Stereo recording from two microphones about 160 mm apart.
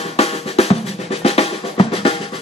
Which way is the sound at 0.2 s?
40° left (ahead or behind).